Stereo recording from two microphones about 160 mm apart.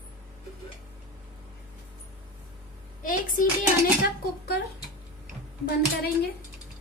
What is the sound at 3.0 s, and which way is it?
Speech, 55° left (ahead or behind).